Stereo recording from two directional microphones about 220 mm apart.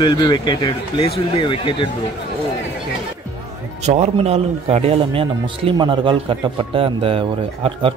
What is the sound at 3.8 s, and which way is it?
Speech, 30° right (ahead or behind).